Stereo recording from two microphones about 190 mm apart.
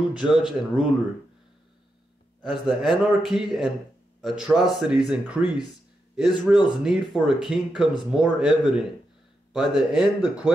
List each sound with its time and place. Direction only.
0.1 s a man's voice: 5° right (ahead or behind)
2.4 s a man's voice: centre (ahead or behind)